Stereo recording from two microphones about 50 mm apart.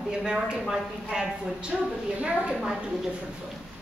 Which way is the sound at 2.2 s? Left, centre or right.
Right.